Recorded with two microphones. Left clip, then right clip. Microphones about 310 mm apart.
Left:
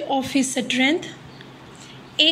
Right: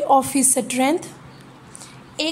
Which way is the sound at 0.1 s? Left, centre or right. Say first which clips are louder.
Right 5 dB; right.